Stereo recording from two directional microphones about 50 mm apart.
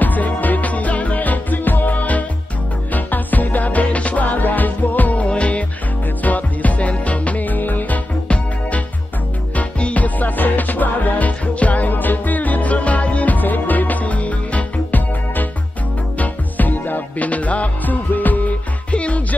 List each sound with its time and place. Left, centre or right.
0.0 s music: left
9.6 s music: left
18.9 s music: left